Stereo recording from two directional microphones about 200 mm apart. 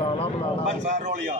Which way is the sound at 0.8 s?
40° right (ahead or behind).